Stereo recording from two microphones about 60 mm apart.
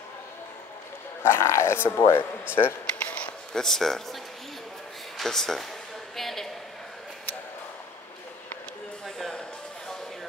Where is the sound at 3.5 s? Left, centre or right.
Centre.